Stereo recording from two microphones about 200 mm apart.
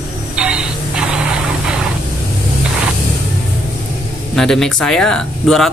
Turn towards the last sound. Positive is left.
turn(degrees=0)  # may be behind; listen again after turning